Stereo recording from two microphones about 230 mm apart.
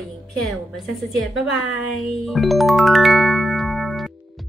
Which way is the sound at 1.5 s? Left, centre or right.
Left.